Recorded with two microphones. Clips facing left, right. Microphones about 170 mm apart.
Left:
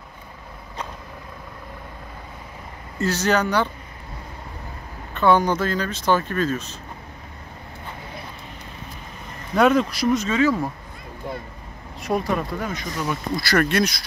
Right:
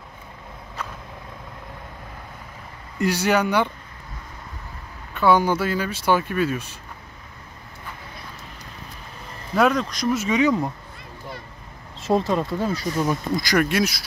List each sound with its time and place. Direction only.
3.0 s speech: 10° right (ahead or behind)
5.1 s speech: 10° right (ahead or behind)
9.6 s speech: 5° left (ahead or behind)
10.1 s speech: 15° right (ahead or behind)
12.0 s speech: 25° right (ahead or behind)
13.4 s speech: 10° right (ahead or behind)